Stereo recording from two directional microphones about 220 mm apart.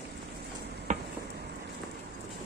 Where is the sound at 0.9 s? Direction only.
35° right (ahead or behind).